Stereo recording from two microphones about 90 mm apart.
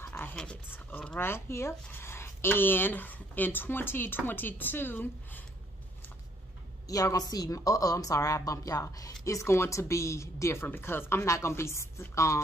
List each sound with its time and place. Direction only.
0.0 s a sound: 25° left (ahead or behind)
0.4 s speech: 10° left (ahead or behind)
6.9 s speech: 40° left (ahead or behind)